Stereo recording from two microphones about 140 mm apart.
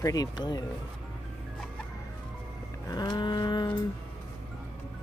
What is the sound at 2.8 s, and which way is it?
Livestock, 30° left (ahead or behind).